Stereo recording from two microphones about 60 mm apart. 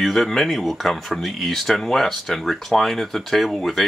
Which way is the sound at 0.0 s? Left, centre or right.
Centre.